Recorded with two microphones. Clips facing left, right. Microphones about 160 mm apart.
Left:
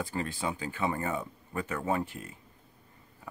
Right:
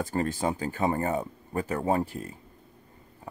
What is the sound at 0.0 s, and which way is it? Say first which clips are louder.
Speech: right 6 dB; 45° right (ahead or behind).